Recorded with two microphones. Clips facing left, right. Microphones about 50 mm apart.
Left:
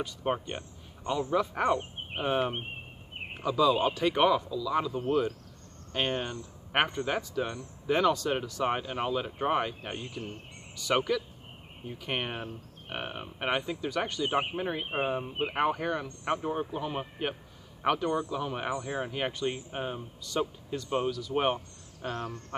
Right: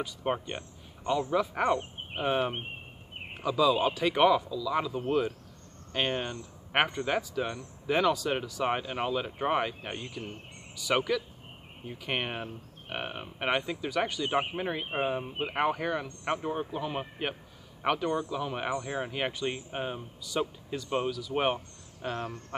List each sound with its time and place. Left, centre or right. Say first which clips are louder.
0.0 s speech: even; centre
4.7 s a man's voice: left 1 dB; centre
22.1 s speech: even; centre